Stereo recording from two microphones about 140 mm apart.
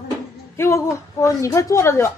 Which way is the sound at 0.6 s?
20° left (ahead or behind).